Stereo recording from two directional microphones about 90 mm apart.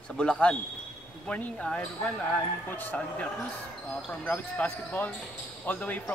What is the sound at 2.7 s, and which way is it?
Speech, 20° left (ahead or behind).